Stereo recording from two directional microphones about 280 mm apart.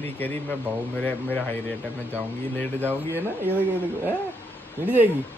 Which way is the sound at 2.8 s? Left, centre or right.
Centre.